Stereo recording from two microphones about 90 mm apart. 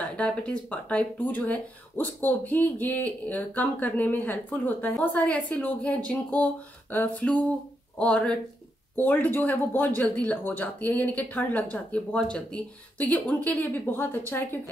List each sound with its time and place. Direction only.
0.2 s speech: 15° left (ahead or behind)